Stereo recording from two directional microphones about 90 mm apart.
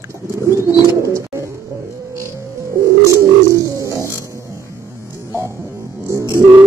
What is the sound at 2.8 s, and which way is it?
Bird, 35° right (ahead or behind).